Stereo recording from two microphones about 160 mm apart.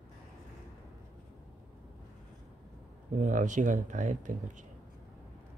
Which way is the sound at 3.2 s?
50° right (ahead or behind).